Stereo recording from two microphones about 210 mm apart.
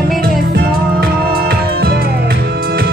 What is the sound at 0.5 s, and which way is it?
Music, 45° right (ahead or behind).